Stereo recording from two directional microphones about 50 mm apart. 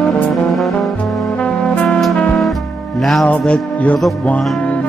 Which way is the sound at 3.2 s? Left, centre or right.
Left.